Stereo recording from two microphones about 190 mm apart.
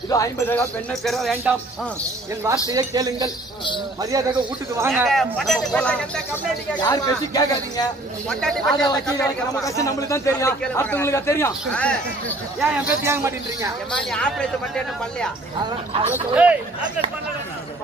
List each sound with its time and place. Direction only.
0.1 s a man's voice: 15° left (ahead or behind)
1.0 s speech: centre (ahead or behind)
2.7 s speech: 20° right (ahead or behind)
5.0 s speech: centre (ahead or behind)
6.8 s speech: 20° left (ahead or behind)
8.3 s speech: 5° left (ahead or behind)
8.8 s a man's voice: 20° left (ahead or behind)
12.6 s speech: 10° right (ahead or behind)
13.9 s speech: 5° left (ahead or behind)
16.1 s speech: 5° right (ahead or behind)